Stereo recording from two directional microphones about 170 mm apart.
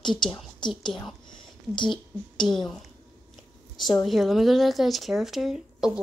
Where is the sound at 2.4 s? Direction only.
Centre (ahead or behind).